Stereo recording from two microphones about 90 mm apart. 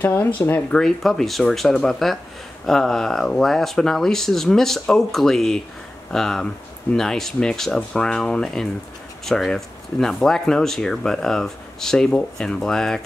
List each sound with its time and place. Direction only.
0.0 s speech: 20° left (ahead or behind)
0.7 s speech: 5° left (ahead or behind)